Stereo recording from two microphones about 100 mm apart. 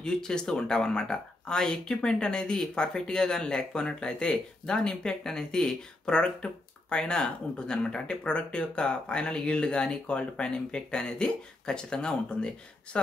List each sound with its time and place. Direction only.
0.0 s speech: 5° left (ahead or behind)